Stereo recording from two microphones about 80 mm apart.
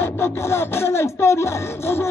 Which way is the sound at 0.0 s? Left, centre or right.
Left.